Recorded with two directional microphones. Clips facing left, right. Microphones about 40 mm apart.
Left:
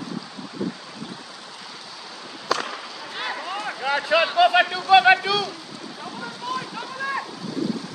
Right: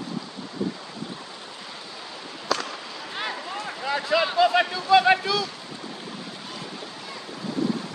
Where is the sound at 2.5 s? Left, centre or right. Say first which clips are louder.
Left 2 dB; centre.